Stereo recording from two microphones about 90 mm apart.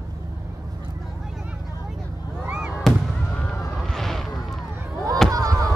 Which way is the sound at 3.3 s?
10° left (ahead or behind).